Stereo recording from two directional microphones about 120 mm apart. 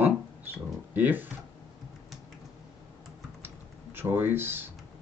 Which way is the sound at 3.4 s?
15° right (ahead or behind).